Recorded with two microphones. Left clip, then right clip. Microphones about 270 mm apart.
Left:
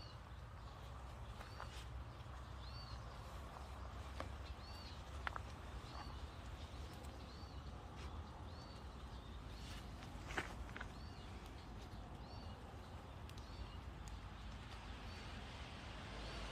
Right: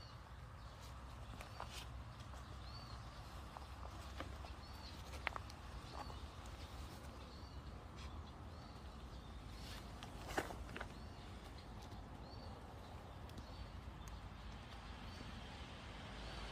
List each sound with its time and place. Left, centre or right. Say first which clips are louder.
5.3 s vehicle: right 2 dB; right
10.3 s walk: right 2 dB; right